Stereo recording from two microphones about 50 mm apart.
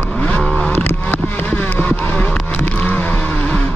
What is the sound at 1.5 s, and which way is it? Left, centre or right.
Vehicle, left.